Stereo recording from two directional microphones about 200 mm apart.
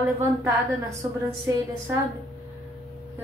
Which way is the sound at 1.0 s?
15° right (ahead or behind).